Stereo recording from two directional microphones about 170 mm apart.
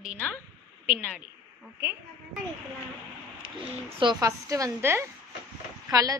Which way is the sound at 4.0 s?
25° right (ahead or behind).